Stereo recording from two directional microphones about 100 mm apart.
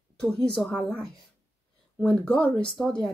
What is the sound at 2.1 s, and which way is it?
Speech, 10° left (ahead or behind).